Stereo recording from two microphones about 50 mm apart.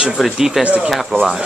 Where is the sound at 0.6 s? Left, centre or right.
Right.